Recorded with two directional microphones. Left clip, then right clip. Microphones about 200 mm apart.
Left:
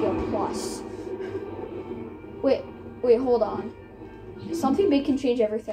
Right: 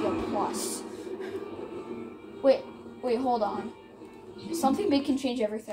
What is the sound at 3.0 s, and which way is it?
Speech, 60° right (ahead or behind).